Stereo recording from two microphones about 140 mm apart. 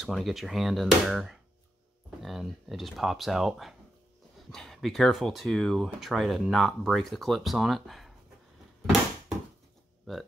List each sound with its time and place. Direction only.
0.0 s speech: centre (ahead or behind)
10.1 s speech: centre (ahead or behind)